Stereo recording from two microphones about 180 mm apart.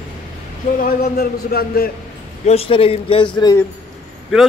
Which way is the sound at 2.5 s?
30° left (ahead or behind).